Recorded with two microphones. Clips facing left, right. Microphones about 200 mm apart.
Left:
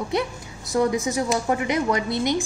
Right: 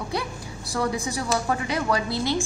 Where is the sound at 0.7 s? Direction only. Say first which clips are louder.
Left 5 dB; 20° left (ahead or behind).